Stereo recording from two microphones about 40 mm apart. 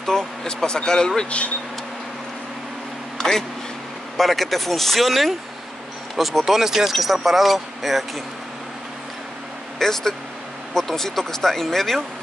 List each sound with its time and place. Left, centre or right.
0.0 s speech: centre
3.2 s vehicle: centre
4.2 s speech: centre
9.8 s speech: centre